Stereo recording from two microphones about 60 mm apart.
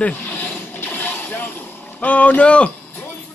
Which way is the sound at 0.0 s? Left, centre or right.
Left.